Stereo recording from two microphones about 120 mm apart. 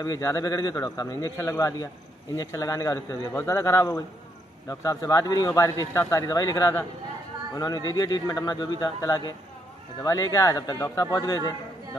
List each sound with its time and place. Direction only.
0.0 s speech: 25° left (ahead or behind)